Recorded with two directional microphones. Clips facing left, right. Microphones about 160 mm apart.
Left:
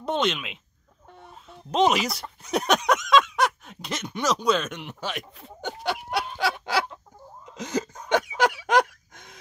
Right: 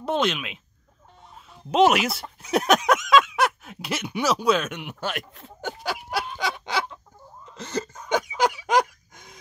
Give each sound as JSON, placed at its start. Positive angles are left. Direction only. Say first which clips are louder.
{"t": 0.0, "sound": "speech", "louder": "right 1 dB", "side_deg": -5}
{"t": 1.7, "sound": "speech", "louder": "right 3 dB", "side_deg": -5}
{"t": 7.4, "sound": "a sound", "louder": "left 2 dB", "side_deg": 10}